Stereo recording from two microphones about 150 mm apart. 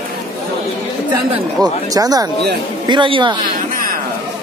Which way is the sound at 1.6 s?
25° right (ahead or behind).